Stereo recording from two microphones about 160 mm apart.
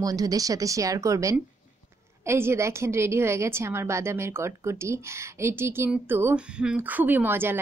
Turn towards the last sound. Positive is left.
turn(degrees=-15)  # may be behind; listen again after turning